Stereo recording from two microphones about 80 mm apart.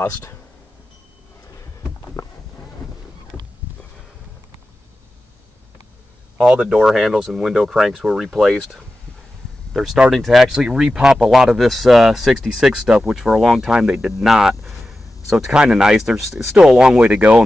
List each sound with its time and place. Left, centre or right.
0.0 s speech: left
2.2 s a sound: left
6.3 s speech: centre